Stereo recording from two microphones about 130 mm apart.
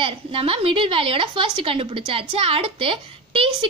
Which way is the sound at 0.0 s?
45° right (ahead or behind).